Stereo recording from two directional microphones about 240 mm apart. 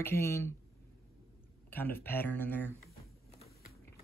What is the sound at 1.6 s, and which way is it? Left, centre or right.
Speech, centre.